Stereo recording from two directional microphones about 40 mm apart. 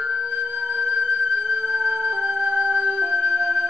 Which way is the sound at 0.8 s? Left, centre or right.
Centre.